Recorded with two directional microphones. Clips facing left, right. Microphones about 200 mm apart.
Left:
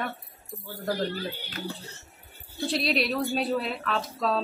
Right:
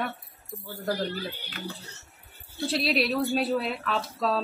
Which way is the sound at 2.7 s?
Centre (ahead or behind).